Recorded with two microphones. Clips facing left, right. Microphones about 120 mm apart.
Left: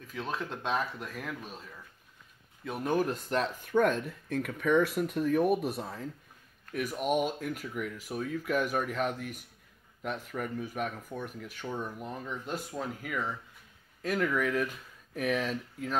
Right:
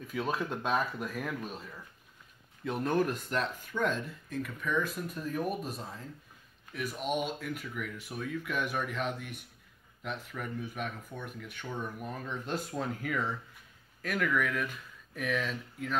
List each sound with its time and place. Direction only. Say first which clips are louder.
0.0 s speech: right 3 dB; 5° right (ahead or behind); by 3.1 s 10° left (ahead or behind)
3.1 s speech: left 2 dB; 35° left (ahead or behind); by 6.0 s 65° left (ahead or behind)
6.7 s speech: left 4 dB; 50° left (ahead or behind)
12.0 s speech: even; 20° left (ahead or behind)
14.0 s speech: left 2 dB; 30° left (ahead or behind)